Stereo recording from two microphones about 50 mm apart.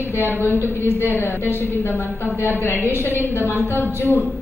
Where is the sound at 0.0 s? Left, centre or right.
Left.